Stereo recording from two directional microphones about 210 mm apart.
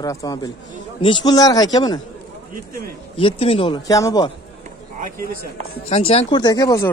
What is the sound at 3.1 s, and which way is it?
Speech, 25° left (ahead or behind).